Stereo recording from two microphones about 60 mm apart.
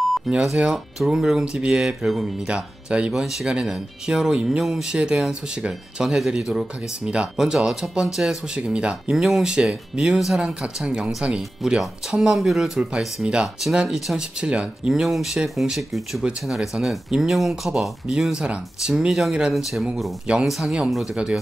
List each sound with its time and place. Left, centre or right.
0.3 s speech: centre
4.9 s speech: centre
9.1 s speech: centre
10.1 s speech: centre
14.9 s speech: centre
18.2 s speech: centre